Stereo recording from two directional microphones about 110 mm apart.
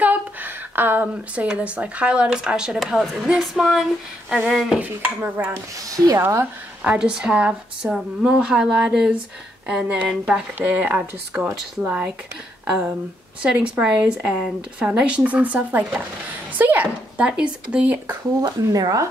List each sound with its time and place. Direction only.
0.0 s a woman's voice: 15° right (ahead or behind); by 4.7 s centre (ahead or behind)
4.7 s a woman's voice: 15° right (ahead or behind)
5.5 s a woman's voice: 35° right (ahead or behind); by 18.1 s 10° right (ahead or behind)
18.4 s speech: 35° right (ahead or behind)